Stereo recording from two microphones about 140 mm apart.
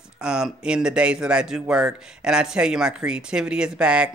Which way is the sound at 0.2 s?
5° right (ahead or behind).